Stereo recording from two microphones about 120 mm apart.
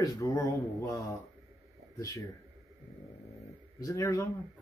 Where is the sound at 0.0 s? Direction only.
25° left (ahead or behind).